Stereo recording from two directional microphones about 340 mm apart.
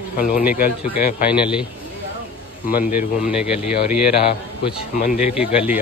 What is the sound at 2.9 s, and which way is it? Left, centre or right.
Speech, centre.